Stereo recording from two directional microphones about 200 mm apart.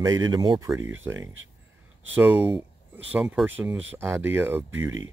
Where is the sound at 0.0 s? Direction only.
20° right (ahead or behind).